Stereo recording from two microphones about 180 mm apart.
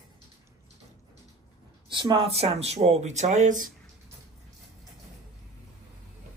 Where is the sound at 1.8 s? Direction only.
25° right (ahead or behind); by 3.7 s 45° right (ahead or behind).